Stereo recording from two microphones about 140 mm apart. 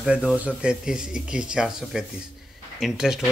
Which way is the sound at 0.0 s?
5° right (ahead or behind).